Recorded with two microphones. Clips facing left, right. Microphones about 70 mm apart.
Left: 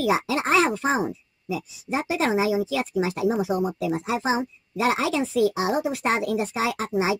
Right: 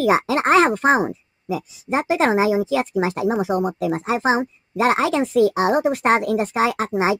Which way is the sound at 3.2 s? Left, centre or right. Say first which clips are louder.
Right 3 dB; right.